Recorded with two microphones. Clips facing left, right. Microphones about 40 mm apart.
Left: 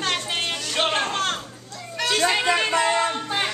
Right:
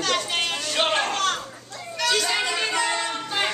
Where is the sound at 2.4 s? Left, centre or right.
Left.